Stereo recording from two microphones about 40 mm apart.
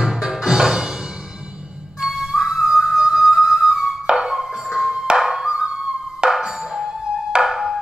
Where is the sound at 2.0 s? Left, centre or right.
Centre.